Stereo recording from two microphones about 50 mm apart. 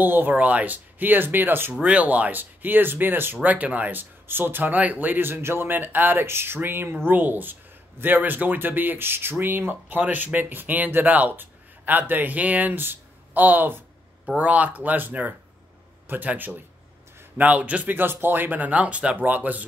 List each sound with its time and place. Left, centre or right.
0.0 s speech: right
0.4 s speech: right
1.9 s speech: right
3.4 s speech: right
5.3 s speech: right
6.2 s speech: right
14.3 s speech: right
17.9 s speech: right
19.1 s speech: right